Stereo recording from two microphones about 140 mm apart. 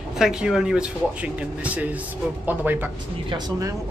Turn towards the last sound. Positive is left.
turn(degrees=-30)  # may be behind; listen again after turning